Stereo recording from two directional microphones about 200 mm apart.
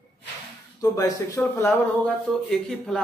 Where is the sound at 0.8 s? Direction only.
15° left (ahead or behind).